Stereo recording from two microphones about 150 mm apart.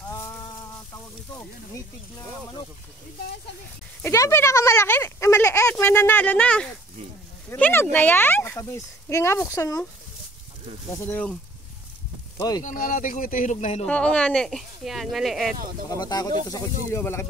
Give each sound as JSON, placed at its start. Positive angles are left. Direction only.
{"t": 0.1, "sound": "a sound", "side_deg": 20}
{"t": 4.0, "sound": "speech", "side_deg": 20}
{"t": 10.9, "sound": "speech", "side_deg": 10}
{"t": 12.4, "sound": "speech", "side_deg": 25}
{"t": 12.6, "sound": "speech", "side_deg": 65}
{"t": 13.8, "sound": "speech", "side_deg": 5}
{"t": 15.9, "sound": "speech", "side_deg": 25}